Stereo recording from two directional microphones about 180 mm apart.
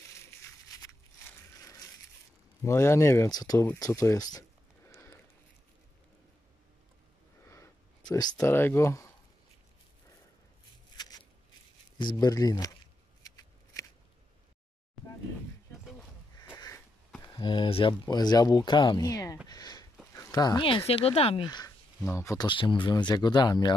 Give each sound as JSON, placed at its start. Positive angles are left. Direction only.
{"t": 0.4, "sound": "a sound", "side_deg": 20}
{"t": 1.6, "sound": "crushing", "side_deg": 20}
{"t": 2.6, "sound": "speech", "side_deg": 15}
{"t": 3.6, "sound": "a sound", "side_deg": 15}
{"t": 7.4, "sound": "a sound", "side_deg": 15}
{"t": 12.0, "sound": "speech", "side_deg": 25}
{"t": 13.2, "sound": "scissors", "side_deg": 20}
{"t": 16.5, "sound": "sniff", "side_deg": 20}
{"t": 17.2, "sound": "speech", "side_deg": 25}
{"t": 19.4, "sound": "a sound", "side_deg": 20}
{"t": 20.1, "sound": "speech", "side_deg": 15}
{"t": 21.5, "sound": "speech", "side_deg": 20}